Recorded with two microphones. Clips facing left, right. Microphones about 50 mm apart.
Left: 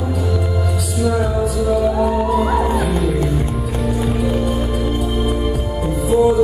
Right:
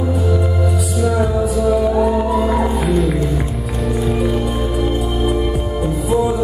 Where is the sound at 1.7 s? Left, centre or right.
Centre.